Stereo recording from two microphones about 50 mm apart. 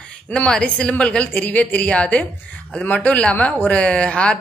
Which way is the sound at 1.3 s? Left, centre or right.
Left.